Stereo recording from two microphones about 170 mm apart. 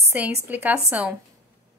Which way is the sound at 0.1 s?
10° right (ahead or behind).